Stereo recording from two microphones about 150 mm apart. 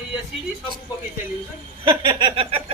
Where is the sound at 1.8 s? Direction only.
30° right (ahead or behind).